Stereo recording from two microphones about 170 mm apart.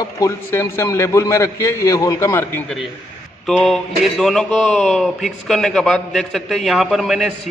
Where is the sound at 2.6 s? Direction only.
Centre (ahead or behind).